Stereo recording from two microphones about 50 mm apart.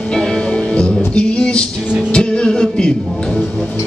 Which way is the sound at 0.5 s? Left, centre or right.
Left.